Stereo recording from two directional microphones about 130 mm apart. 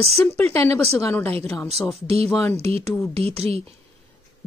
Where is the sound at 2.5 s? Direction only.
50° right (ahead or behind).